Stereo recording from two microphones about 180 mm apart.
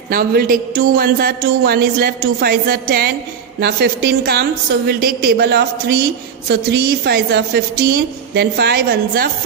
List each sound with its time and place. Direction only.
0.1 s speech: 55° right (ahead or behind)